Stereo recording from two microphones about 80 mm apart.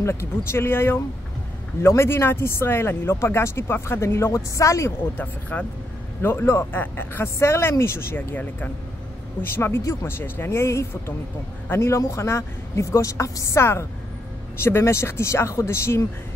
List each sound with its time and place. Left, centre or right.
0.0 s speech: left
5.1 s speech: left